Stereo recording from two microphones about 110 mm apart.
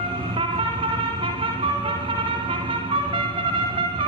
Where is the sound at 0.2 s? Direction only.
50° right (ahead or behind).